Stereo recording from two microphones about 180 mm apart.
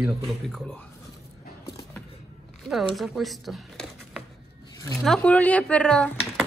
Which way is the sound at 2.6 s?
Centre (ahead or behind).